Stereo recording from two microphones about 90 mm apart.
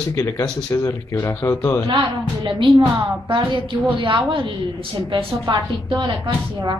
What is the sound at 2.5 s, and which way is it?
A woman's voice, 65° right (ahead or behind).